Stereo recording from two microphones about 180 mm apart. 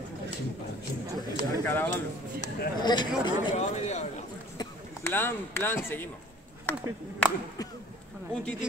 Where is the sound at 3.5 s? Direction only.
40° left (ahead or behind).